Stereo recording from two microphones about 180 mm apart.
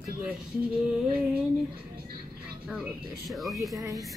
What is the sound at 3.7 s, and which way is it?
Speech, 20° right (ahead or behind).